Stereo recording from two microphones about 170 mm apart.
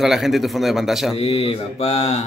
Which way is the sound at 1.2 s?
35° left (ahead or behind).